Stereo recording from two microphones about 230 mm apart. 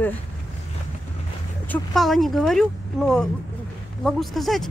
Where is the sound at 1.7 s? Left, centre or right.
Centre.